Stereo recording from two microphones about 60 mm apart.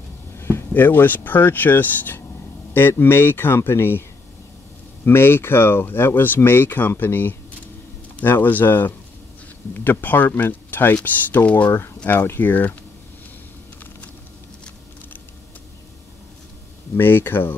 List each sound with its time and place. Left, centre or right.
0.4 s speech: left
5.0 s speech: left
16.9 s speech: left